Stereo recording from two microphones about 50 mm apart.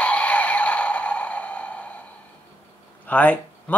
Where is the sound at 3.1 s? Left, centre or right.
Left.